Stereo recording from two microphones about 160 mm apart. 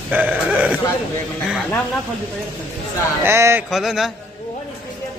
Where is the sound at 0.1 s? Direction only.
10° right (ahead or behind).